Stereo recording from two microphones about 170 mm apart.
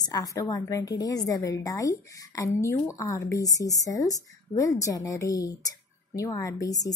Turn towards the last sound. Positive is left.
turn(degrees=20)  # may be behind; listen again after turning